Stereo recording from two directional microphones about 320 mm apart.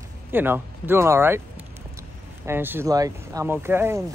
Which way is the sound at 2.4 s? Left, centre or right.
Centre.